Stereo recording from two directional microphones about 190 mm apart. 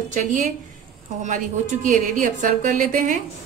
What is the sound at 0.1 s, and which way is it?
Speech, 40° right (ahead or behind).